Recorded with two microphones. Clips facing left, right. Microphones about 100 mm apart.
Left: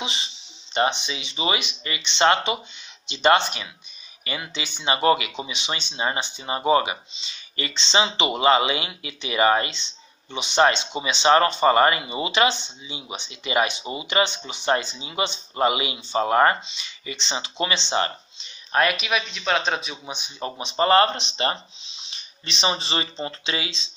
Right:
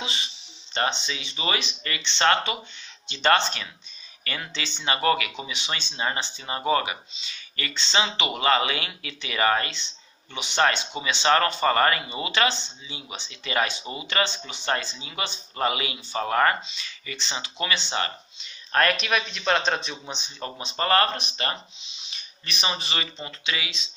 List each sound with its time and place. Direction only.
0.0 s speech: 20° left (ahead or behind)
18.7 s speech: 10° left (ahead or behind); by 23.9 s 30° left (ahead or behind)